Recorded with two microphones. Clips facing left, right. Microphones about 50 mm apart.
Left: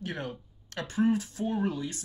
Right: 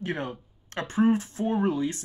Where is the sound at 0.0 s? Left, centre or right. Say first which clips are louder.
Right 5 dB; right.